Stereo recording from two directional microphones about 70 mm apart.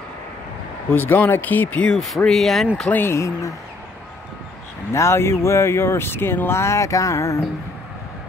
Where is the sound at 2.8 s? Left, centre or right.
Left.